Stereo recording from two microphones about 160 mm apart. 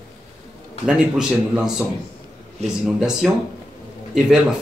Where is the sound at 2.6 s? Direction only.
45° right (ahead or behind).